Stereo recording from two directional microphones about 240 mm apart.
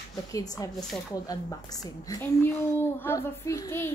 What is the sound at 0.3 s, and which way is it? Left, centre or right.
A woman's voice, centre.